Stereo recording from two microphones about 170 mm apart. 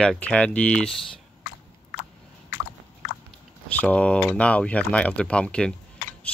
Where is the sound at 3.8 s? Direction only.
10° left (ahead or behind).